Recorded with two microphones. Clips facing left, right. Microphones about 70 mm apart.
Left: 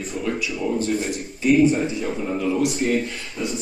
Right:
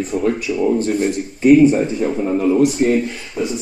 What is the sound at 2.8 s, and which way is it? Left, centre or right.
Speech, right.